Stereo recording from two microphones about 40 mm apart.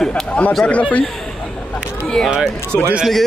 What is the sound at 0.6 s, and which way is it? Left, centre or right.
Speech, left.